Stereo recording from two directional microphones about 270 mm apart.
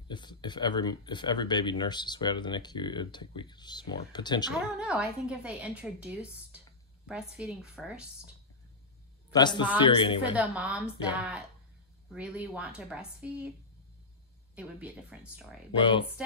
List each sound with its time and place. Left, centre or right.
0.1 s speech: centre
4.7 s a woman's voice: centre
9.3 s a woman's voice: centre
10.3 s a woman's voice: centre
14.5 s a woman's voice: centre
15.8 s speech: centre